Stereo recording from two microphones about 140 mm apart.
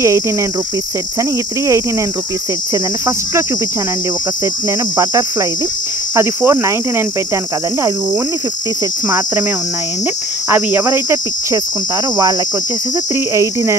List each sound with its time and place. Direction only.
2.7 s cricket: 20° right (ahead or behind)
4.6 s cricket: 20° right (ahead or behind)
10.5 s cricket: 15° right (ahead or behind)
13.3 s cricket: 20° right (ahead or behind)